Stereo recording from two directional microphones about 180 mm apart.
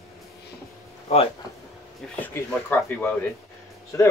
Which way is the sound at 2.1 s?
10° left (ahead or behind).